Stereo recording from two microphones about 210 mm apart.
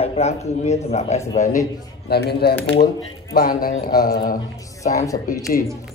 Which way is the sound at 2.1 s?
50° left (ahead or behind).